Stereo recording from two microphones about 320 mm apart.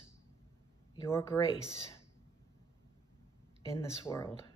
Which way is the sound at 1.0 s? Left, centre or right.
Centre.